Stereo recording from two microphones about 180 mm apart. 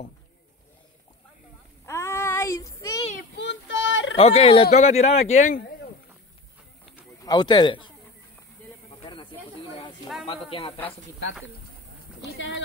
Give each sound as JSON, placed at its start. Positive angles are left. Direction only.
{"t": 1.9, "sound": "child singing", "side_deg": 15}
{"t": 3.3, "sound": "child singing", "side_deg": 90}
{"t": 4.2, "sound": "speech", "side_deg": 35}
{"t": 7.0, "sound": "speech", "side_deg": 20}
{"t": 9.0, "sound": "snake", "side_deg": 25}
{"t": 10.2, "sound": "speech", "side_deg": 30}